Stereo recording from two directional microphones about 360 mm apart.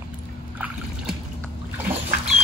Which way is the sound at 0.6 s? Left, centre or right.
Centre.